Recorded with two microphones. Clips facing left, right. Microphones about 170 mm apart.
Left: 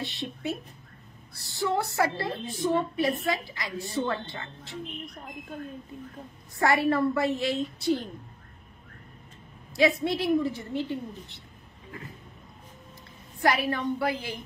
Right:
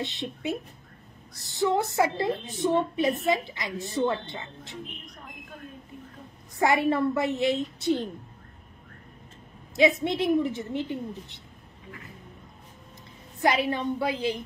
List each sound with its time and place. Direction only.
0.0 s a woman's voice: 20° right (ahead or behind)
6.6 s a woman's voice: 20° right (ahead or behind)
9.8 s a woman's voice: 20° right (ahead or behind)
13.4 s a woman's voice: 20° right (ahead or behind)